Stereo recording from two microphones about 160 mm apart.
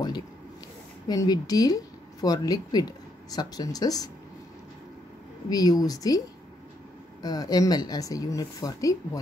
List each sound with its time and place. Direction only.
1.0 s speech: 25° left (ahead or behind)
5.5 s speech: 25° left (ahead or behind)